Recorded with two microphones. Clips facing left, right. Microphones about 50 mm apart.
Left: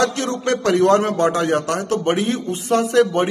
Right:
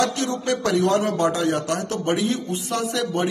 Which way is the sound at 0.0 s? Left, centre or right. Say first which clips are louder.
Left 3 dB; left.